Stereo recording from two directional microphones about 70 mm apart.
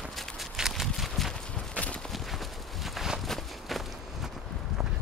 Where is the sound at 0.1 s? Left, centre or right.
Centre.